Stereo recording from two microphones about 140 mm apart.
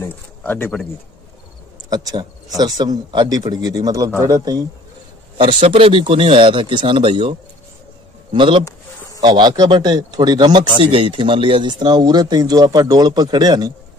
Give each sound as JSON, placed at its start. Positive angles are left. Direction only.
{"t": 0.0, "sound": "speech", "side_deg": 15}
{"t": 1.9, "sound": "speech", "side_deg": -30}
{"t": 5.4, "sound": "speech", "side_deg": -40}